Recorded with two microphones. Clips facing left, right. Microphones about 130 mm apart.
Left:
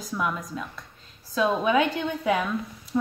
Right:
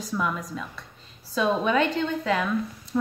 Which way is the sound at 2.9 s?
Centre (ahead or behind).